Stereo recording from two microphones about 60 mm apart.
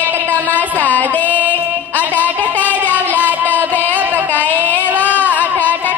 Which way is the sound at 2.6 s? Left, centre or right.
Right.